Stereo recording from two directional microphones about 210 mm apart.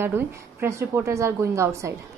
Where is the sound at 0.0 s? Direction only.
10° right (ahead or behind).